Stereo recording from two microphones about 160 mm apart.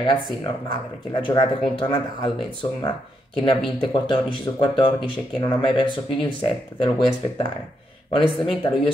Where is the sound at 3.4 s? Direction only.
30° left (ahead or behind).